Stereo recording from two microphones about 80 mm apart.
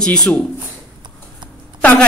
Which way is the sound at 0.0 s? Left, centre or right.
Centre.